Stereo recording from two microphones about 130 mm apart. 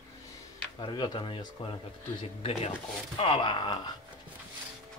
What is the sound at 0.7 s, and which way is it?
Speech, 35° left (ahead or behind).